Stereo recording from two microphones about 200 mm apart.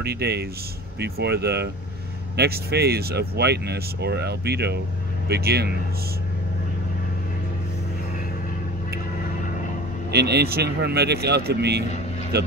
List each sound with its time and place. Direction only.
0.0 s speech: 55° right (ahead or behind)
10.1 s speech: 55° right (ahead or behind)